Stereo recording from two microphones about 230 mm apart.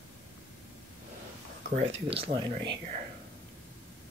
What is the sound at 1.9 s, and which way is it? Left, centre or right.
Speech, right.